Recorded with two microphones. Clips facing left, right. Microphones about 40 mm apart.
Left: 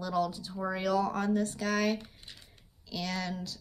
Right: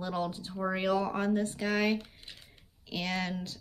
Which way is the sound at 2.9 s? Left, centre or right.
Right.